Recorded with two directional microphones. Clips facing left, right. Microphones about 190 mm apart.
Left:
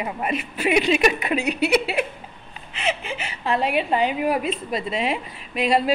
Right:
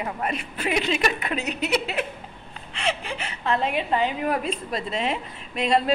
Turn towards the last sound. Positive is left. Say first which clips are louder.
# left 2 dB
turn(degrees=5)  # may be behind; listen again after turning